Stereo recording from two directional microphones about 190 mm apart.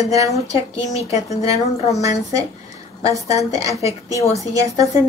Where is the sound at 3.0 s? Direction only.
15° right (ahead or behind).